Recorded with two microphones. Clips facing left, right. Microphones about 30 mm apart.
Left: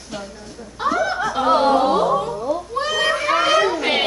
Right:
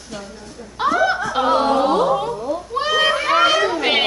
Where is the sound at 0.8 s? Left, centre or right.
Right.